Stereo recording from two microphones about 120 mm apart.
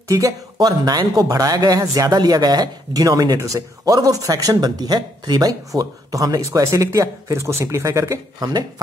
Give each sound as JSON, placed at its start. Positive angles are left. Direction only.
{"t": 0.1, "sound": "speech", "side_deg": -30}